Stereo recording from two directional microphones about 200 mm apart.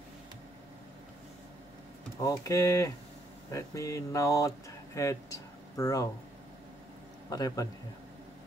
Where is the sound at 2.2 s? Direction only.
15° left (ahead or behind).